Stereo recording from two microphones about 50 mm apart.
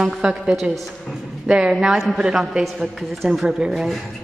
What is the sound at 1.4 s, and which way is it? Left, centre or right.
Speech, centre.